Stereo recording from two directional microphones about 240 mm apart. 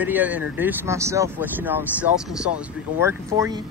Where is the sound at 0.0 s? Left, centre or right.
Centre.